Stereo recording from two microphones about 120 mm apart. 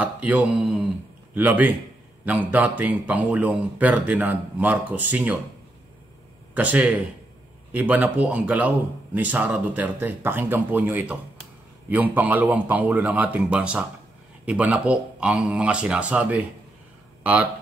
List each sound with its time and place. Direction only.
0.0 s speech: 10° right (ahead or behind)
6.5 s speech: 10° right (ahead or behind)